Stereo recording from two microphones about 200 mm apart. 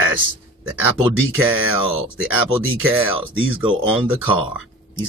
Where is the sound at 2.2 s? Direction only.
10° right (ahead or behind).